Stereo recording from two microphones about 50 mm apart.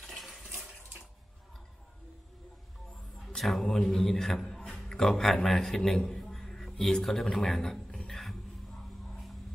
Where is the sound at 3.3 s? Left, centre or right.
Centre.